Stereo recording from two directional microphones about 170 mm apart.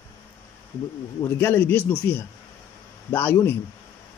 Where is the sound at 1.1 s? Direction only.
15° left (ahead or behind).